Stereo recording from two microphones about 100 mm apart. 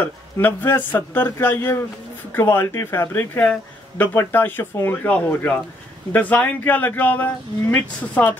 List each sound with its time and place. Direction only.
0.0 s speech: 20° left (ahead or behind)